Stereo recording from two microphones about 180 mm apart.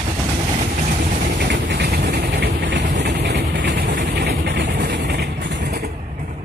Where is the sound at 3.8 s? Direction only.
70° right (ahead or behind).